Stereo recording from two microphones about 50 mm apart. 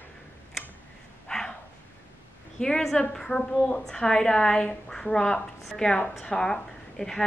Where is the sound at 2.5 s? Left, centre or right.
Centre.